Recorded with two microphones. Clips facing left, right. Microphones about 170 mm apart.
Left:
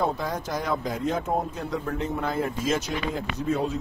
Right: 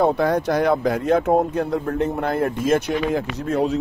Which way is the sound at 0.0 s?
70° right (ahead or behind).